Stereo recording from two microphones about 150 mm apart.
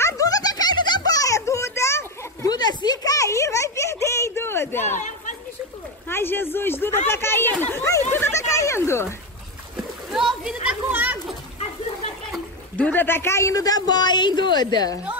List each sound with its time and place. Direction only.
0.0 s music: 25° left (ahead or behind)
2.8 s a sound: 25° left (ahead or behind)
6.0 s speech: 15° left (ahead or behind)
10.1 s children playing: 5° right (ahead or behind)
12.3 s speech: 10° left (ahead or behind); by 15.0 s 25° left (ahead or behind)